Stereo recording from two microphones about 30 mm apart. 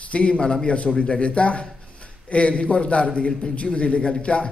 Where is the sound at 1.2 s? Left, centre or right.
Left.